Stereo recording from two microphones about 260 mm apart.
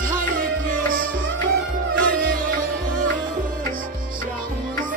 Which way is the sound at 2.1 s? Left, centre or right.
Right.